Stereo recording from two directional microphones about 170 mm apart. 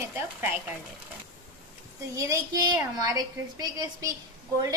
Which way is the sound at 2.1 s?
20° right (ahead or behind).